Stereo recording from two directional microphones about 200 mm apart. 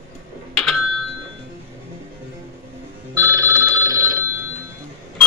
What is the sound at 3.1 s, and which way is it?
Telephone bell ringing, 15° right (ahead or behind).